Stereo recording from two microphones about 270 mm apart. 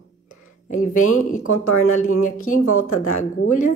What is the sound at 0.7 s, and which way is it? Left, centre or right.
A woman's voice, left.